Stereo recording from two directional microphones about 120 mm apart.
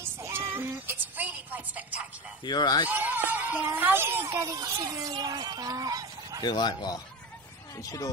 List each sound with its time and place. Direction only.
0.0 s music: 20° right (ahead or behind)
2.4 s speech: 35° left (ahead or behind)
2.9 s speech: 15° right (ahead or behind); by 6.4 s 30° right (ahead or behind)
6.4 s speech: 35° left (ahead or behind)